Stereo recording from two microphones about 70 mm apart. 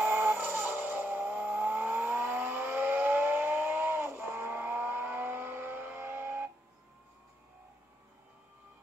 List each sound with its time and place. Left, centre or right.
0.0 s music: right
0.7 s vehicle: right